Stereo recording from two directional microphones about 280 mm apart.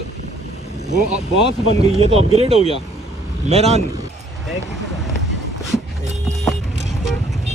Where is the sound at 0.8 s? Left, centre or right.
Right.